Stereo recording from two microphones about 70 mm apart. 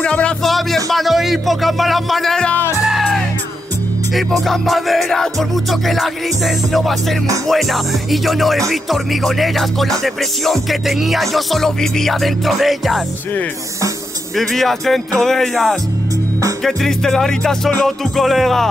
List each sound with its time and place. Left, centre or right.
0.0 s speech: centre
0.4 s music: centre
14.3 s music: centre